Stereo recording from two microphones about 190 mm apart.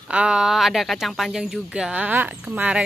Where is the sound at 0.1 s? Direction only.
5° right (ahead or behind).